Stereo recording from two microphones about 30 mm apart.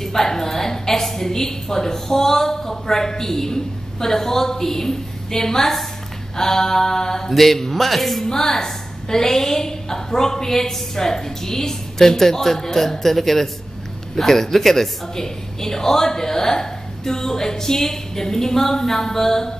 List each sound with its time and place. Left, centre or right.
0.0 s a woman's voice: centre
7.2 s speech: centre
8.3 s a man's voice: centre